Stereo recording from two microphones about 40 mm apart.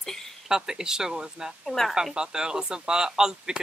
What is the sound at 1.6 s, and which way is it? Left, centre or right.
Speech, centre.